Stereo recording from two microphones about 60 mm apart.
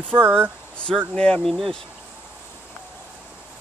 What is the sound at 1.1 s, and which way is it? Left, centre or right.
Speech, centre.